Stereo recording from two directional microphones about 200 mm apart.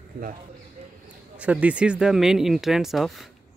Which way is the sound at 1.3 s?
5° right (ahead or behind).